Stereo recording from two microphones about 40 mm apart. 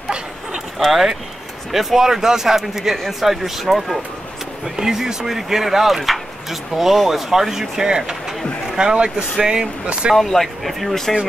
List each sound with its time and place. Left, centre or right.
0.7 s speech: centre; by 10.1 s right
10.1 s speech: centre